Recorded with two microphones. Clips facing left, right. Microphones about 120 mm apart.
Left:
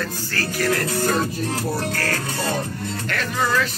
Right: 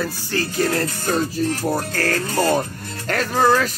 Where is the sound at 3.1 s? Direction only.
40° right (ahead or behind).